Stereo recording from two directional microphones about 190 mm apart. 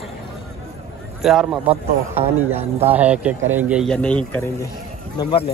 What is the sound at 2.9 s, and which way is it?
Speech, 5° right (ahead or behind).